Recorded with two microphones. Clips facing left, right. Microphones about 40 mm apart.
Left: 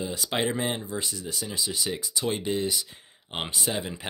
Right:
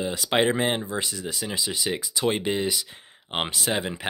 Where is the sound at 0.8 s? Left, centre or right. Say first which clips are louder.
Right 3 dB; right.